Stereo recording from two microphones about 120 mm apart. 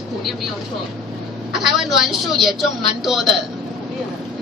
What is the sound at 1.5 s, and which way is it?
A woman's voice, centre (ahead or behind).